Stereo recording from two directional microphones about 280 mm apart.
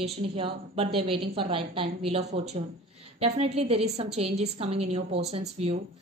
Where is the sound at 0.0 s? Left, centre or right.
Centre.